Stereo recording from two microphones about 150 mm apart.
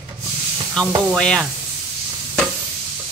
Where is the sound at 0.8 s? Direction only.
5° left (ahead or behind).